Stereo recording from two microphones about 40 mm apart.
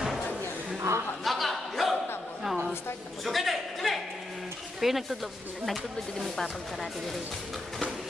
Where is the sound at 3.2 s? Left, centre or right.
Centre.